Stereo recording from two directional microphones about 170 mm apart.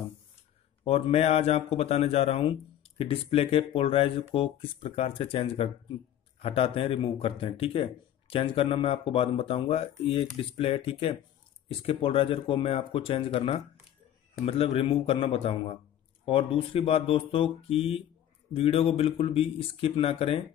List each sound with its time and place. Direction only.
0.8 s speech: 35° left (ahead or behind)